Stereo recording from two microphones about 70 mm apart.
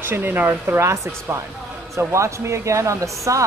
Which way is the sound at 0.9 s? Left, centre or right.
Right.